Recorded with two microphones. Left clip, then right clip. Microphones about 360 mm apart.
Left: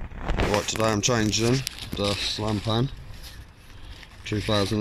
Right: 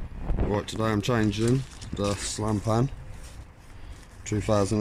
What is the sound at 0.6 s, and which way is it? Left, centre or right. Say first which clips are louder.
Speech: left 4 dB; centre.